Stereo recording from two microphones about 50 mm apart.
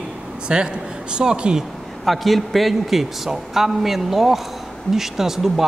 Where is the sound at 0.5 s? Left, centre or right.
Centre.